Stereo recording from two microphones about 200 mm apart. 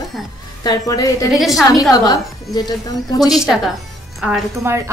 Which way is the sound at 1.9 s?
20° left (ahead or behind).